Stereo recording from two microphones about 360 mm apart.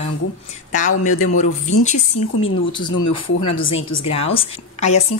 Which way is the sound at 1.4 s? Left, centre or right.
Centre.